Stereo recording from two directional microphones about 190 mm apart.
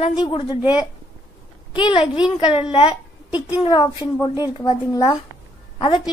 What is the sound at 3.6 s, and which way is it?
A woman's voice, 25° left (ahead or behind).